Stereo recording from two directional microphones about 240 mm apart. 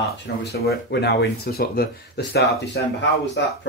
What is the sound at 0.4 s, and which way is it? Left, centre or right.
Speech, left.